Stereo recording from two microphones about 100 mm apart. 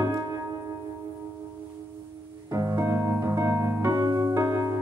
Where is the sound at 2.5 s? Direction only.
35° right (ahead or behind).